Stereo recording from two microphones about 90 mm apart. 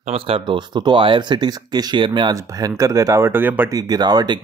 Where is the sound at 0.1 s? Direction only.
90° right.